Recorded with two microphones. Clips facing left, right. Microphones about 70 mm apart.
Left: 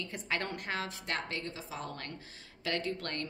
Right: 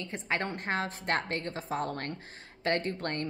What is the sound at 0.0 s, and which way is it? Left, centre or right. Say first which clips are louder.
A woman's voice: right 3 dB; right.